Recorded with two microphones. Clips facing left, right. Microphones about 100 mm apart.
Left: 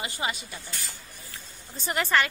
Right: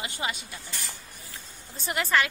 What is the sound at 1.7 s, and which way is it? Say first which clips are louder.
Speech: left 1 dB; centre (ahead or behind).